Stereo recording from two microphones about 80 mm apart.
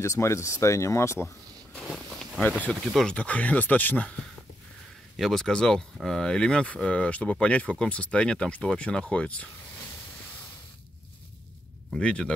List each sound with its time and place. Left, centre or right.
0.0 s speech: left
1.9 s a sound: centre
3.1 s speech: centre
5.1 s speech: centre
11.9 s speech: centre